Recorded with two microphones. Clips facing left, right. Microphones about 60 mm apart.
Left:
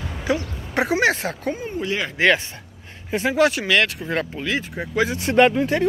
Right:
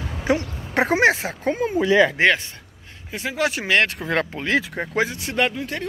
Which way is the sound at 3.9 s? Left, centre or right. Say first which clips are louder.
Right 2 dB; right.